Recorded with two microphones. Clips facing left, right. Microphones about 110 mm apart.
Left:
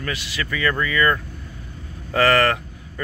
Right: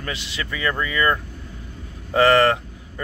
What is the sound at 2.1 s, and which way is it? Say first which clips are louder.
Vehicle: right 2 dB; 20° right (ahead or behind).